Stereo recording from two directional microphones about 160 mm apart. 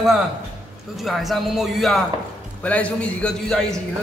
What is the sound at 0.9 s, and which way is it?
A man's voice, centre (ahead or behind).